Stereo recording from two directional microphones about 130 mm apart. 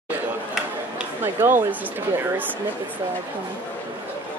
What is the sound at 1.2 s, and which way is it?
Speech, 15° right (ahead or behind).